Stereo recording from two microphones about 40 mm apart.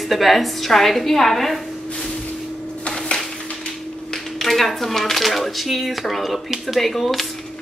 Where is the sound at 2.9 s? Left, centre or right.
Left.